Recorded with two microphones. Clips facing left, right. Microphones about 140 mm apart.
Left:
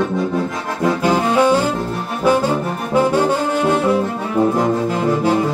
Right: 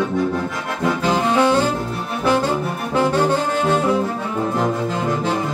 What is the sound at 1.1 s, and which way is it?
Saxophone, 10° left (ahead or behind).